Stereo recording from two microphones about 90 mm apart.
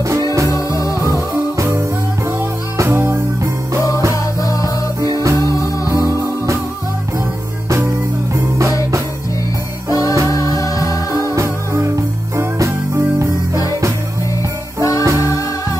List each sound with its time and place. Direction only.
0.5 s music: 40° left (ahead or behind)
1.6 s music: 35° right (ahead or behind)
4.1 s music: 40° left (ahead or behind)
8.4 s music: 35° right (ahead or behind)
9.8 s music: 40° left (ahead or behind)
11.3 s music: 30° right (ahead or behind)
14.8 s music: 40° left (ahead or behind)